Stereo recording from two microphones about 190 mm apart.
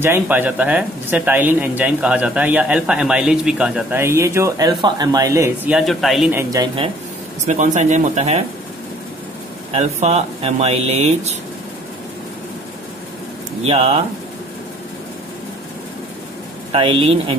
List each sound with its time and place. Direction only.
0.0 s speech: 10° right (ahead or behind)
5.7 s a man's voice: centre (ahead or behind)
6.3 s speech: 20° right (ahead or behind)
7.4 s speech: 40° right (ahead or behind)
9.7 s speech: 35° right (ahead or behind)
13.7 s speech: 30° right (ahead or behind)
16.7 s speech: 30° right (ahead or behind)